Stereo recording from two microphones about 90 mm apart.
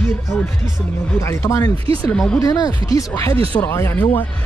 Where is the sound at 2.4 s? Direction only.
45° left (ahead or behind).